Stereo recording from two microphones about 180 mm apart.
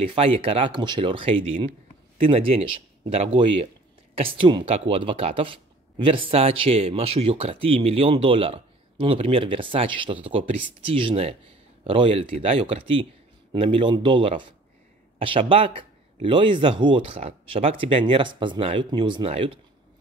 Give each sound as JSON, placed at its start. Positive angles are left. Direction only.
{"t": 0.1, "sound": "speech", "side_deg": -30}